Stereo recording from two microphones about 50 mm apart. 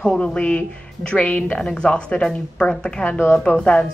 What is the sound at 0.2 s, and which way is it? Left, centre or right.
Speech, left.